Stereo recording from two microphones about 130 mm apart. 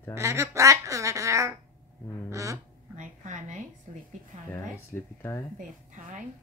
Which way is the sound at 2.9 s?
75° right (ahead or behind).